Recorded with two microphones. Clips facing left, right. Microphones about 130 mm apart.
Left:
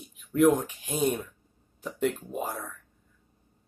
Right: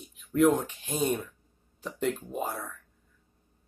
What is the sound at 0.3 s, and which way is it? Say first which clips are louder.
Speech: left 1 dB; 10° left (ahead or behind).